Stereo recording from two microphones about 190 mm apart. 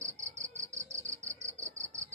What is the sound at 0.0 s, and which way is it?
Cricket, 15° right (ahead or behind).